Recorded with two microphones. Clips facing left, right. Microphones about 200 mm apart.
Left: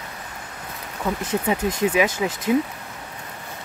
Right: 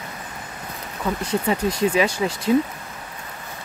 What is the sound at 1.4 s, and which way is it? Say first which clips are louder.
Speech: right 1 dB; 10° left (ahead or behind).